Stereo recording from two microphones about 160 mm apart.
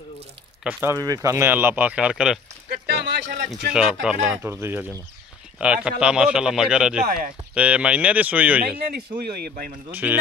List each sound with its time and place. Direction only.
0.7 s speech: 10° right (ahead or behind)
2.7 s a sound: 70° right (ahead or behind)
3.7 s speech: 5° right (ahead or behind)
4.4 s speech: 15° right (ahead or behind)
8.7 s speech: 70° right (ahead or behind)
9.8 s speech: 10° right (ahead or behind)